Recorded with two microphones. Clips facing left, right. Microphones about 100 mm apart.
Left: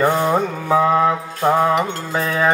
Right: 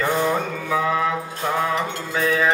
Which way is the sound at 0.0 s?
35° left (ahead or behind).